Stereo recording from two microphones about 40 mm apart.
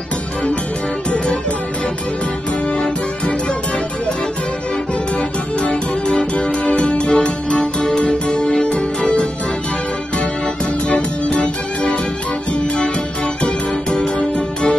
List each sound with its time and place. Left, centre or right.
1.1 s music: left
5.6 s music: left
10.9 s music: left
13.9 s music: left